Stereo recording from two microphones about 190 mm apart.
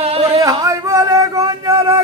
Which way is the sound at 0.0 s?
30° right (ahead or behind).